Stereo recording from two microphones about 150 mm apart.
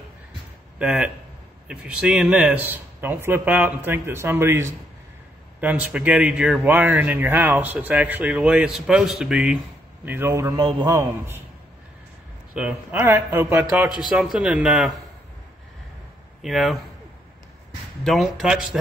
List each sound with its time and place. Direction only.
0.7 s speech: 5° right (ahead or behind)
10.0 s speech: 15° right (ahead or behind)
10.5 s a man's voice: 25° right (ahead or behind)
12.5 s speech: 10° right (ahead or behind)
13.8 s speech: 5° right (ahead or behind)
16.4 s speech: centre (ahead or behind)
18.0 s speech: centre (ahead or behind)